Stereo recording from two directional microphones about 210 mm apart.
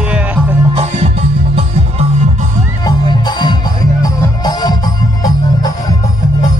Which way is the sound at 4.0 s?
20° left (ahead or behind).